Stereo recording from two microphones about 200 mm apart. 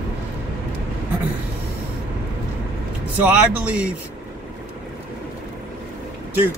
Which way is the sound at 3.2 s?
5° right (ahead or behind).